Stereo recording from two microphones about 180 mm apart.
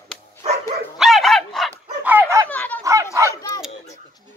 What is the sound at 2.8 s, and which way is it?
Dog, 15° right (ahead or behind).